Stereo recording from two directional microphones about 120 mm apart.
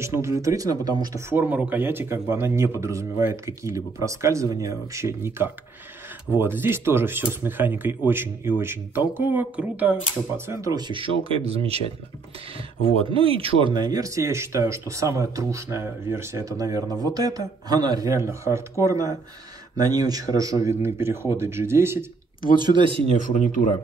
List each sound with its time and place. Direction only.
0.0 s speech: 25° right (ahead or behind)
1.3 s speech: 10° right (ahead or behind); by 11.8 s 55° right (ahead or behind)
13.1 s speech: 50° right (ahead or behind); by 22.0 s 20° right (ahead or behind)
22.4 s speech: 40° right (ahead or behind)